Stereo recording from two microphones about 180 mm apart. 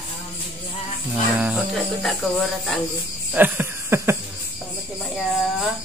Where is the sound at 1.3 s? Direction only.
10° right (ahead or behind).